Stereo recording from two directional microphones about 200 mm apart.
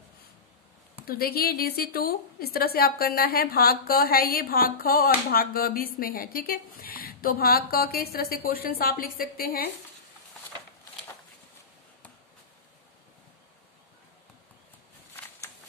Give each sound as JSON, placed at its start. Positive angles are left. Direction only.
{"t": 1.0, "sound": "a woman's voice", "side_deg": 50}